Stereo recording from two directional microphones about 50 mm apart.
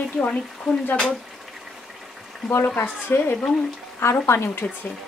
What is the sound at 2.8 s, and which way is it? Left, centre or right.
Speech, left.